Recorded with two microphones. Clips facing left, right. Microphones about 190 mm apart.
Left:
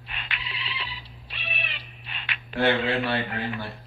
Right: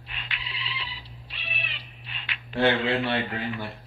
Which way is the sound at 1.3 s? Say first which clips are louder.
Left 3 dB; 65° left (ahead or behind).